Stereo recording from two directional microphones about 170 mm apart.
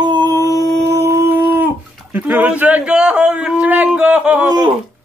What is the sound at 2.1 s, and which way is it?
Speech, 10° right (ahead or behind).